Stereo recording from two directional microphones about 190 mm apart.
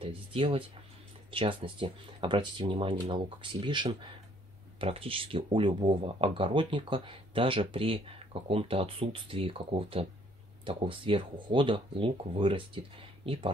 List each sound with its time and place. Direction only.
0.0 s speech: 30° right (ahead or behind)